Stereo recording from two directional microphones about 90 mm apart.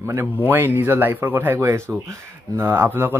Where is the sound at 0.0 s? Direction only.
25° right (ahead or behind).